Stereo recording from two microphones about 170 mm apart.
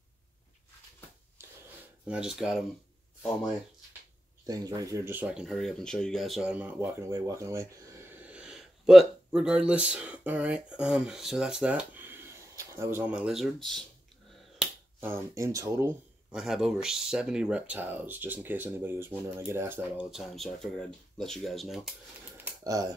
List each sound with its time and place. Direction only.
2.0 s speech: 5° right (ahead or behind)
4.5 s speech: 20° right (ahead or behind); by 13.8 s centre (ahead or behind)
14.6 s speech: 10° right (ahead or behind)
16.3 s speech: 5° right (ahead or behind)
20.1 s speech: centre (ahead or behind)
22.4 s typing: 20° right (ahead or behind)